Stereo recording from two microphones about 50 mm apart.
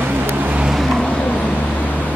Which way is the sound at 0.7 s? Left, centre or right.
Centre.